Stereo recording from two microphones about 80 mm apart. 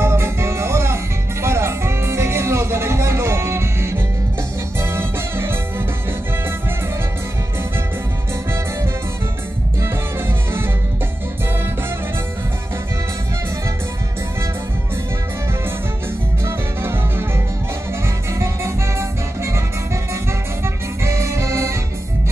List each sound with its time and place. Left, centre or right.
0.0 s music: right
9.8 s music: right
16.4 s music: right